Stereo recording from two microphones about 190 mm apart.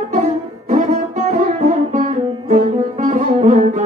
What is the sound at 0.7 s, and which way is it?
Music, 40° right (ahead or behind).